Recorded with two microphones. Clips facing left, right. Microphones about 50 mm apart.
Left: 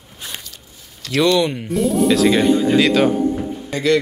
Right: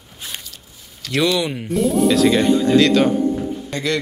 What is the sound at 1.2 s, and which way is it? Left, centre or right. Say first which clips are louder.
Speech: left 3 dB; centre.